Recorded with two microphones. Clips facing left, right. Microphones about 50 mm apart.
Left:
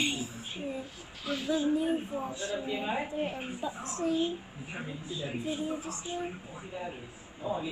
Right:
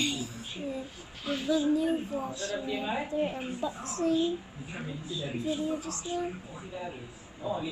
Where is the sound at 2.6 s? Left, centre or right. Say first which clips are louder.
Right 2 dB; left.